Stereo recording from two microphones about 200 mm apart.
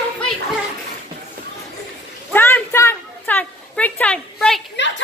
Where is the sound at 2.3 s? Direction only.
10° left (ahead or behind).